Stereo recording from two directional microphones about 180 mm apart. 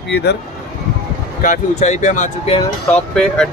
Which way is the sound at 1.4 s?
45° left (ahead or behind).